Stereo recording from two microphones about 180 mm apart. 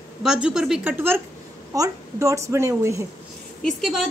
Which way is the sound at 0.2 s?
5° right (ahead or behind).